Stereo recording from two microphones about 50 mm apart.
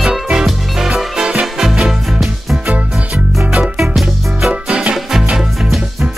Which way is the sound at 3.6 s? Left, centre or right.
Centre.